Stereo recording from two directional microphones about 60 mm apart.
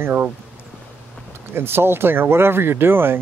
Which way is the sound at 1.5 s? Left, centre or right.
Right.